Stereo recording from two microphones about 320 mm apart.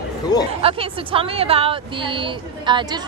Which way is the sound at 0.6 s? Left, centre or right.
Centre.